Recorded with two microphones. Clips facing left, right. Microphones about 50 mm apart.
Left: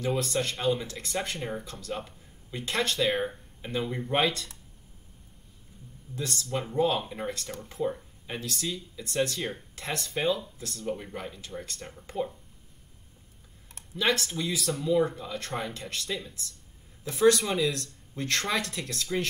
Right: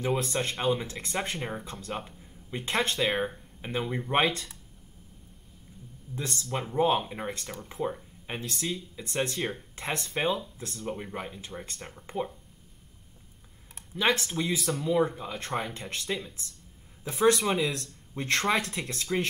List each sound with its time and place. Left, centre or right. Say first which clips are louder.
0.2 s speech: left 1 dB; right
3.0 s speech: left 1 dB; centre
6.1 s speech: left 1 dB; right
6.5 s speech: left 1 dB; centre
6.8 s speech: right 2 dB; right
13.9 s speech: right 1 dB; right